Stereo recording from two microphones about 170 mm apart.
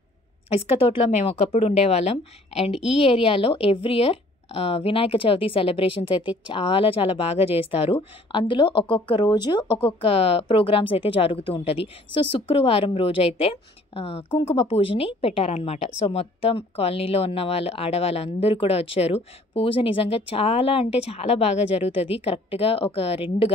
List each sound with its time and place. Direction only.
0.5 s a woman's voice: 35° left (ahead or behind)